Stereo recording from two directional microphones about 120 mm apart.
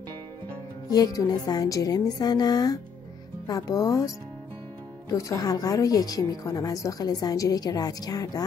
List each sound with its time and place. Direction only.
0.8 s a woman's voice: 30° left (ahead or behind)
5.1 s a woman's voice: 30° left (ahead or behind)